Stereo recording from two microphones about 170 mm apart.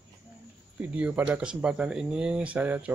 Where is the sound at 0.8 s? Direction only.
10° right (ahead or behind).